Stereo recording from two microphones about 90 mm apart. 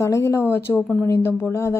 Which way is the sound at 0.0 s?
35° left (ahead or behind).